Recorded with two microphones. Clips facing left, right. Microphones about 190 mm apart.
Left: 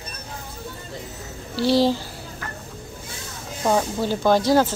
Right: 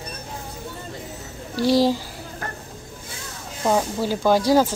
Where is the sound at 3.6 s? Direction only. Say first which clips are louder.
Even; 5° right (ahead or behind).